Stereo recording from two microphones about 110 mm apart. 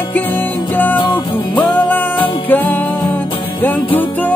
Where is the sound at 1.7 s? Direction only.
15° left (ahead or behind).